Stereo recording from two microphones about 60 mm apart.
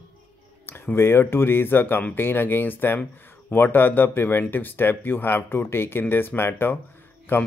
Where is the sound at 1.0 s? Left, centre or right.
Left.